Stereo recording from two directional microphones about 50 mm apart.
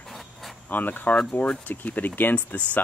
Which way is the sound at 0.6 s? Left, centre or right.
Left.